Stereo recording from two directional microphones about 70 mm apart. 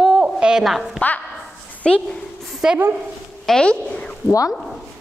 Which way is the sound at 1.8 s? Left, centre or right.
Centre.